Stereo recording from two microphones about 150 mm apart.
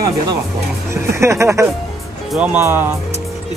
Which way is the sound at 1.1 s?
20° right (ahead or behind).